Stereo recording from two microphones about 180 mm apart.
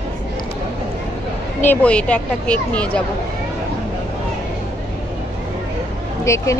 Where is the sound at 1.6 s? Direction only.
10° left (ahead or behind).